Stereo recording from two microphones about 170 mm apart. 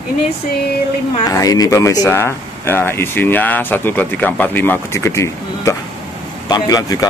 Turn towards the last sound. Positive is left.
turn(degrees=20)  # may be behind; listen again after turning